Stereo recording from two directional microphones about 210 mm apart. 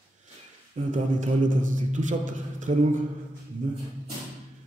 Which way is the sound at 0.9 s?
35° right (ahead or behind).